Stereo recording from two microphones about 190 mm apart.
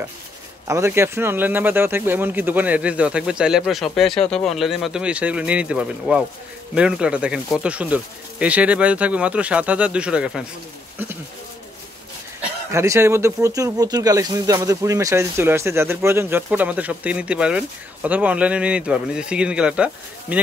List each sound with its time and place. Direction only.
0.7 s a man's voice: 15° right (ahead or behind)
12.7 s speech: 15° right (ahead or behind)